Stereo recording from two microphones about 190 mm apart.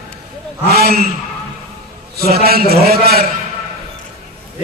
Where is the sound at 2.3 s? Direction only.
55° right (ahead or behind).